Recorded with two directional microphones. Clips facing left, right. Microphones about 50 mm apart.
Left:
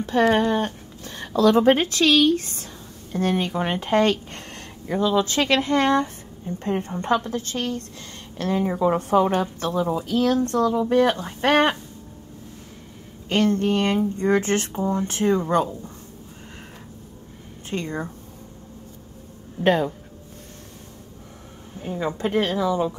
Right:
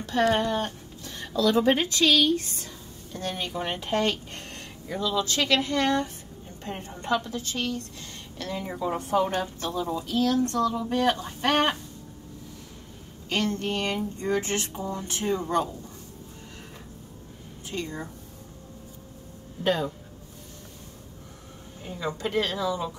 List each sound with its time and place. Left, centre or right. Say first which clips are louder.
0.4 s a woman's voice: left 5 dB; left
13.3 s a woman's voice: left 7 dB; left
17.6 s a woman's voice: left 5 dB; left
19.6 s speech: left 6 dB; left
21.8 s a woman's voice: left 5 dB; left